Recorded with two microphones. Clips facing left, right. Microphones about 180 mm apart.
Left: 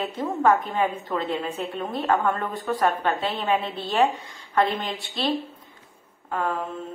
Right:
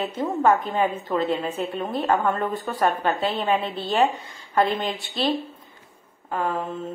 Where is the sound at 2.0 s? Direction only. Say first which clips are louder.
Right 1 dB; 10° right (ahead or behind).